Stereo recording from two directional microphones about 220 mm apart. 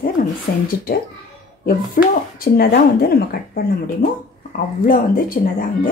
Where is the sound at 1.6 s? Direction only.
40° left (ahead or behind).